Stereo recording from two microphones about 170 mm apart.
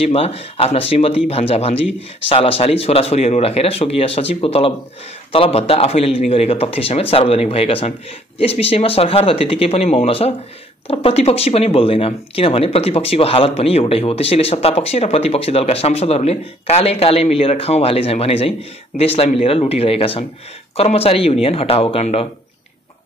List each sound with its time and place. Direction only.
0.0 s speech: 35° left (ahead or behind)